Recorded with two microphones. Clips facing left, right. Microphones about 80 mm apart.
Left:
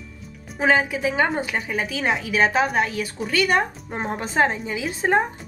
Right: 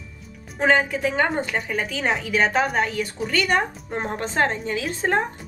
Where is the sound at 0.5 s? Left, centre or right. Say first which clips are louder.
Even; centre.